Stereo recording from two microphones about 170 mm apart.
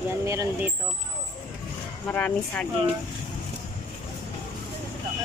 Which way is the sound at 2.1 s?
10° left (ahead or behind).